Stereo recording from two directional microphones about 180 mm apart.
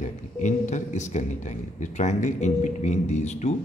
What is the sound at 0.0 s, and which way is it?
A man's voice, 40° left (ahead or behind).